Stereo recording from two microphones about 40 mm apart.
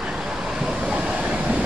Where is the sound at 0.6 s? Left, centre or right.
Right.